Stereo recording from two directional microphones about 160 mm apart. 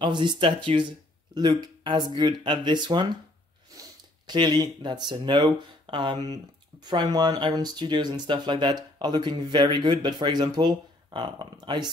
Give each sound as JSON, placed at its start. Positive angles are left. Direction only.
{"t": 0.0, "sound": "speech", "side_deg": -30}
{"t": 4.3, "sound": "speech", "side_deg": -25}